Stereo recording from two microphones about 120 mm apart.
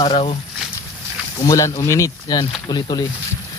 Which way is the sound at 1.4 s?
25° left (ahead or behind).